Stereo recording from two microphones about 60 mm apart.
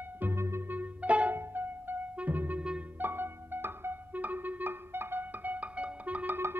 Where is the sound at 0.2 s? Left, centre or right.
Right.